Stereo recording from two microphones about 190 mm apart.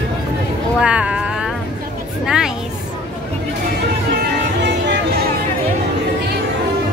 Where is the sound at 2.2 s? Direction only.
5° right (ahead or behind).